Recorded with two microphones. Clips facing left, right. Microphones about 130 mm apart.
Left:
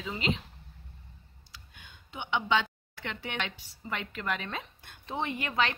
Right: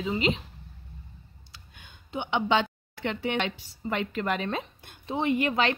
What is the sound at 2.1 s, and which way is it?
A woman's voice, 30° right (ahead or behind).